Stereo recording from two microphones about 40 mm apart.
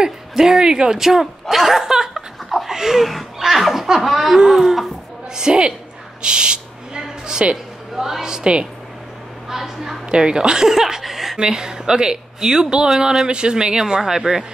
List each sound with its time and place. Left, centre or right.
0.4 s speech: centre
1.5 s laughter: centre
5.5 s a woman's voice: right
6.2 s owl: right
7.9 s a woman's voice: centre
9.5 s speech: centre
10.1 s speech: right
11.3 s speech: centre